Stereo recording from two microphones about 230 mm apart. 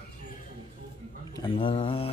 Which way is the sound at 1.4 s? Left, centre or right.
Left.